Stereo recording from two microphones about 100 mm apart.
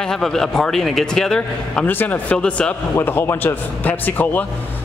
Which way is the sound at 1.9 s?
20° left (ahead or behind).